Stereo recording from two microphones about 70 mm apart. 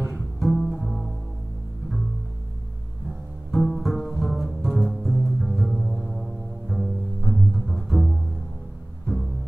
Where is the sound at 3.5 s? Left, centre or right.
Centre.